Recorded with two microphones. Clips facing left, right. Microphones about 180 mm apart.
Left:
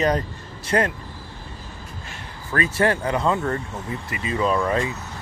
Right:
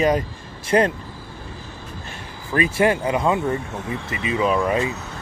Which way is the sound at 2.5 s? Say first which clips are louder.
Right 2 dB; 15° right (ahead or behind).